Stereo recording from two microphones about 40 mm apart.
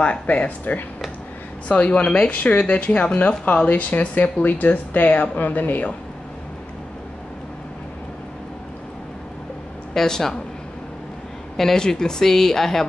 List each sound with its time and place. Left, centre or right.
0.0 s speech: left
9.9 s speech: centre
11.5 s speech: centre